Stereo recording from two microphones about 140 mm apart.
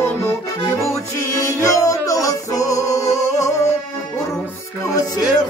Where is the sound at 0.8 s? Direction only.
20° left (ahead or behind).